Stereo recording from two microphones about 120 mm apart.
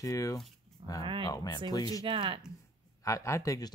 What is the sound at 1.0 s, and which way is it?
Speech, 45° right (ahead or behind).